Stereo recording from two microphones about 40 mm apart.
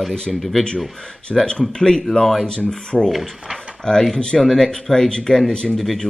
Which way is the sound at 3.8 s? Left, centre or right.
Centre.